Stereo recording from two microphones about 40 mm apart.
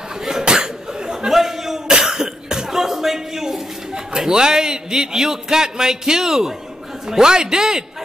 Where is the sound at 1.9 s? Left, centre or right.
Centre.